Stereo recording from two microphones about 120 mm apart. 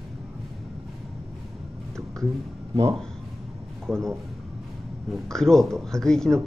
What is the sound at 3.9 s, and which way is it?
Speech, 5° left (ahead or behind).